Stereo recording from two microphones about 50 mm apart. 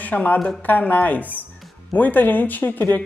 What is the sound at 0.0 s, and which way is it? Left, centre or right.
Speech, left.